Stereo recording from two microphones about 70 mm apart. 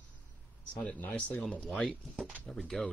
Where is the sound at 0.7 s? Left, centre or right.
Left.